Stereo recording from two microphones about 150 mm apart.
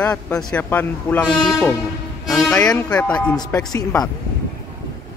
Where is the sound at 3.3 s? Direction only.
25° left (ahead or behind).